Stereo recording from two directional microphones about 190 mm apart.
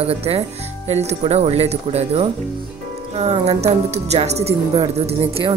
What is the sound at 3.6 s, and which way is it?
A woman's voice, 35° right (ahead or behind).